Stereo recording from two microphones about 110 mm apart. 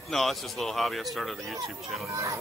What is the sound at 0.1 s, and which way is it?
Speech, centre (ahead or behind).